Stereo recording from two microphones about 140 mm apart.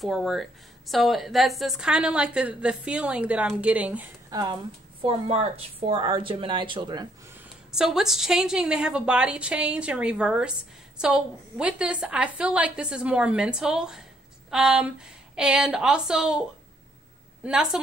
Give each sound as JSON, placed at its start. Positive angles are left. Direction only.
{"t": 0.0, "sound": "a woman's voice", "side_deg": 0}
{"t": 4.3, "sound": "speech", "side_deg": -30}
{"t": 5.0, "sound": "a woman's voice", "side_deg": -45}
{"t": 7.7, "sound": "a woman's voice", "side_deg": -5}